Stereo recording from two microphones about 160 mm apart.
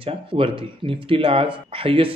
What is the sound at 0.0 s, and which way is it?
Speech, 35° right (ahead or behind).